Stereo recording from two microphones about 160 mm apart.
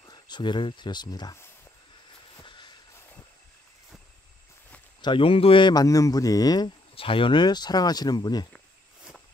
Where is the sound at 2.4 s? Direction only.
30° left (ahead or behind).